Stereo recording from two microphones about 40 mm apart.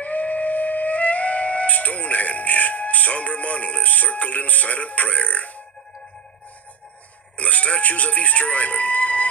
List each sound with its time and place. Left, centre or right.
0.0 s music: left
7.3 s speech: left